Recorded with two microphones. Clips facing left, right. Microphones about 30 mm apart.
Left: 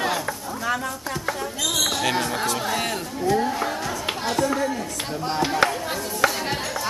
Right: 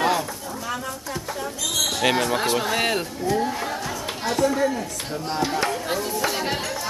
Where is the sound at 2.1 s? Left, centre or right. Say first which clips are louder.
Right 2 dB; centre.